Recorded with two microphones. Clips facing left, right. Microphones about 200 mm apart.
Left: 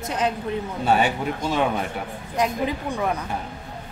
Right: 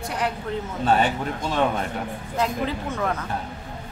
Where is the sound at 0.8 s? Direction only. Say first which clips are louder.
Even; 10° left (ahead or behind).